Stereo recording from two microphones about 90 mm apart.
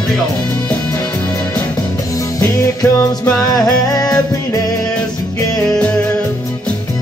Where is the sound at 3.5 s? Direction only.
45° left (ahead or behind).